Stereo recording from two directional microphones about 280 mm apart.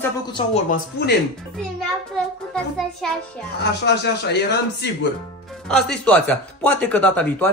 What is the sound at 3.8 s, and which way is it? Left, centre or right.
Speech, left.